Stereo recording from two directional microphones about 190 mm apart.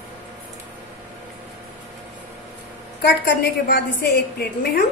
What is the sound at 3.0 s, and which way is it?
A woman's voice, 55° left (ahead or behind).